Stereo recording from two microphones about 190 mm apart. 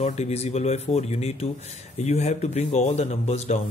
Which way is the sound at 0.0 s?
35° left (ahead or behind).